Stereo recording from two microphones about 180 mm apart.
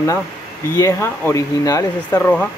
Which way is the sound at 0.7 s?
15° left (ahead or behind).